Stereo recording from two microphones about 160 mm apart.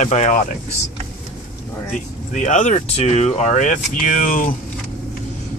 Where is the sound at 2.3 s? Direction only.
50° left (ahead or behind).